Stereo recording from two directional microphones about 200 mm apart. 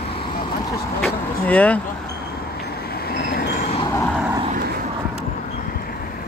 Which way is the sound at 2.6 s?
50° left (ahead or behind).